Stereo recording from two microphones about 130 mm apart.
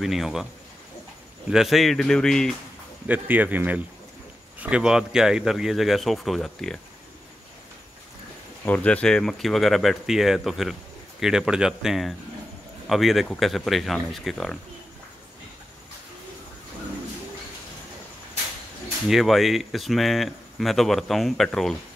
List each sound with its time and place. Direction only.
0.0 s speech: centre (ahead or behind)
1.5 s speech: centre (ahead or behind)
3.1 s speech: 10° right (ahead or behind); by 6.8 s 5° left (ahead or behind)
8.6 s speech: 10° left (ahead or behind)
19.0 s speech: centre (ahead or behind)